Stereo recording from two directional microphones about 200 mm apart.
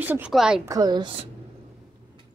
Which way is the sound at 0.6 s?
20° right (ahead or behind).